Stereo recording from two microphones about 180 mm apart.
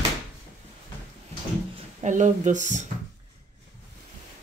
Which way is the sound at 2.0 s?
45° right (ahead or behind).